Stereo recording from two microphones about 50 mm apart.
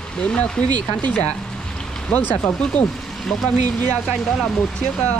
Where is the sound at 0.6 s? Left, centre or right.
Left.